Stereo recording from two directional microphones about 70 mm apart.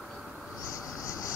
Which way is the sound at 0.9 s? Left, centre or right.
Left.